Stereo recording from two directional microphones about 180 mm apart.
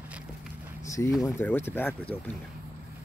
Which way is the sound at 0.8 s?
15° left (ahead or behind).